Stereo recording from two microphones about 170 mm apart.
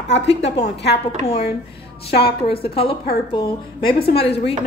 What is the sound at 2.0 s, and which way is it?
A woman's voice, 35° left (ahead or behind).